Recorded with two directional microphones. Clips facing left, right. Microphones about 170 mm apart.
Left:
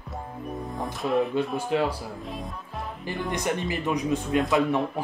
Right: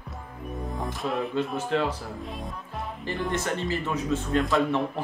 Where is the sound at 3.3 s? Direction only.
15° left (ahead or behind).